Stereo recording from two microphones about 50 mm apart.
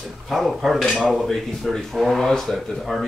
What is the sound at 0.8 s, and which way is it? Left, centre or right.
Speech, centre.